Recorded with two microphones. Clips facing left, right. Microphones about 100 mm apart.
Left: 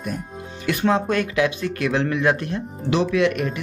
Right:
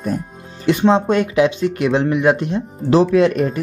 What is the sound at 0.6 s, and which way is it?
Speech, 25° right (ahead or behind).